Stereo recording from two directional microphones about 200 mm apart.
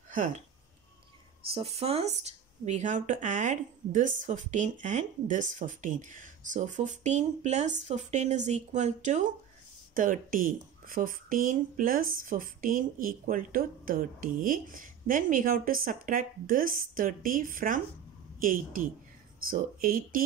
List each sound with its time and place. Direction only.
0.1 s speech: 40° right (ahead or behind)
1.5 s speech: 30° right (ahead or behind); by 20.2 s 45° right (ahead or behind)